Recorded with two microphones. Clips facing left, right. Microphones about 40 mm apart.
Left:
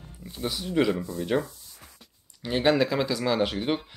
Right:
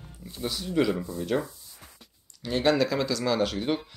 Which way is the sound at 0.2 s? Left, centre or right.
Centre.